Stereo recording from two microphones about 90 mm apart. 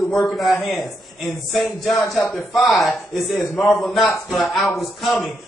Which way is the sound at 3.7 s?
Centre (ahead or behind).